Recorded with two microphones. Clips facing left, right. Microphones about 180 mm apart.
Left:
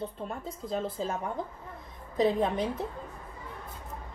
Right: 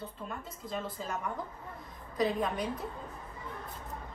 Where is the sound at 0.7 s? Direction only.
30° left (ahead or behind).